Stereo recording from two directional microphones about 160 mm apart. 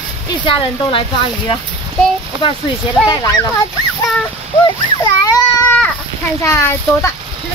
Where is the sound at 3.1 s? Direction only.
20° left (ahead or behind).